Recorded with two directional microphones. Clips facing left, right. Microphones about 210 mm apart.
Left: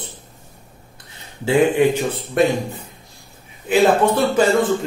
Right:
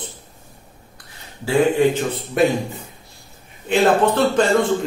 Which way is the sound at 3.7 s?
10° left (ahead or behind).